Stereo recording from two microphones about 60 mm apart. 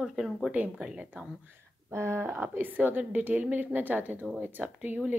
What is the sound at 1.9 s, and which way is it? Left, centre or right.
Speech, right.